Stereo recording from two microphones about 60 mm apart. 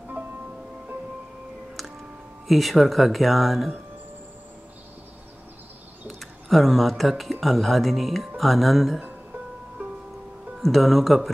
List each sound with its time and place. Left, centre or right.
0.1 s music: right
2.4 s speech: centre
6.0 s speech: centre
10.6 s speech: centre